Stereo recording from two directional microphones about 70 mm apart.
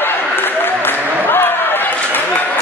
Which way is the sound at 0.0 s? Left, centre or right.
Left.